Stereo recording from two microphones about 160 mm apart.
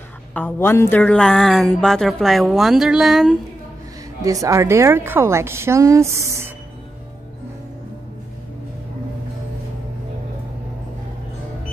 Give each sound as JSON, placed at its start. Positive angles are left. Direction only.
{"t": 0.3, "sound": "a woman's voice", "side_deg": 10}
{"t": 4.2, "sound": "a woman's voice", "side_deg": -20}